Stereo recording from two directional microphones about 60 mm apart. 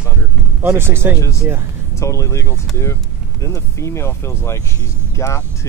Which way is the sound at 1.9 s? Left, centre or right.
Left.